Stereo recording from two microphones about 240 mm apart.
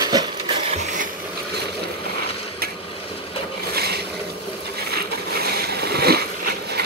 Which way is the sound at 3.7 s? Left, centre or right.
Right.